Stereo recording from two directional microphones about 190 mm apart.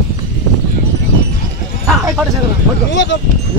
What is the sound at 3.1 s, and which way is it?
Speech, 75° left (ahead or behind).